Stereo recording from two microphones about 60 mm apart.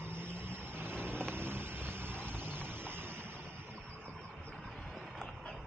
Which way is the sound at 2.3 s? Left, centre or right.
Right.